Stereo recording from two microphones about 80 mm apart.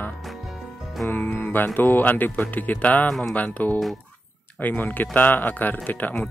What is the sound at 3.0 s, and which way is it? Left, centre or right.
Speech, centre.